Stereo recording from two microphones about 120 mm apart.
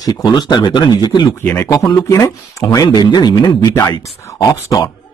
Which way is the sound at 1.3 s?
20° left (ahead or behind).